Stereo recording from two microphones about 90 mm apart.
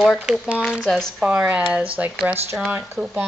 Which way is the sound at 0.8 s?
5° left (ahead or behind).